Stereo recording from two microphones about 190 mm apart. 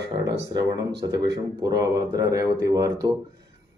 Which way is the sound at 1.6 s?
20° right (ahead or behind).